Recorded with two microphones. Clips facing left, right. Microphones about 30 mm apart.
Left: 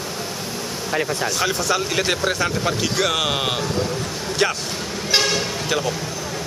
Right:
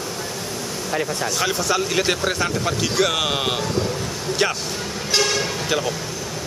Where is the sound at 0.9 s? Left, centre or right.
Centre.